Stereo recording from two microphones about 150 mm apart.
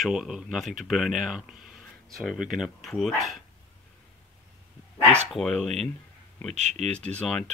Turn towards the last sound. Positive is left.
turn(degrees=5)  # may be behind; listen again after turning